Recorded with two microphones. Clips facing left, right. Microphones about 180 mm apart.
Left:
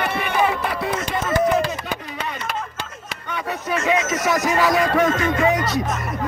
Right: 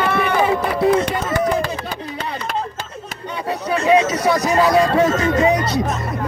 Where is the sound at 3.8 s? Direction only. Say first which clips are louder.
Right 6 dB; 30° right (ahead or behind).